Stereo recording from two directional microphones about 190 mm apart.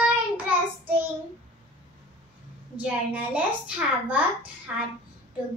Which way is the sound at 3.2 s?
10° right (ahead or behind).